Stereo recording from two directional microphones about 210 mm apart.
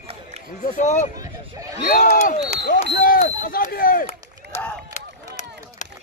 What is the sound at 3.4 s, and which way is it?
Speech, 40° left (ahead or behind).